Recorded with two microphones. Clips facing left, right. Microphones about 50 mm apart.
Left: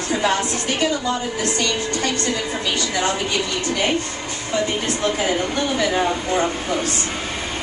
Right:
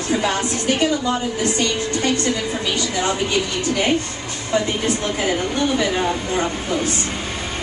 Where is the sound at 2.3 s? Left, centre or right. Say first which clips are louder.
Right 1 dB; centre.